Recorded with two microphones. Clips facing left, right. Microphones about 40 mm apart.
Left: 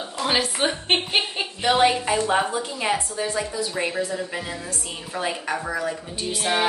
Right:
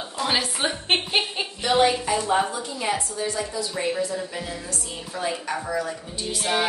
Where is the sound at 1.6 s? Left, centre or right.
Left.